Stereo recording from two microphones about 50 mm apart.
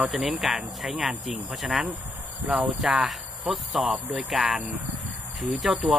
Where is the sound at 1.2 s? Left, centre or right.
Centre.